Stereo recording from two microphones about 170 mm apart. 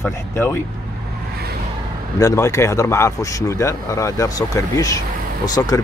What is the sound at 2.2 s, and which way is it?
Speech, 20° left (ahead or behind).